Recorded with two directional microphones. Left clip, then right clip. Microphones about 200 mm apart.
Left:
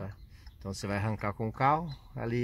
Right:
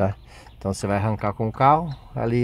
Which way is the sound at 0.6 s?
20° right (ahead or behind).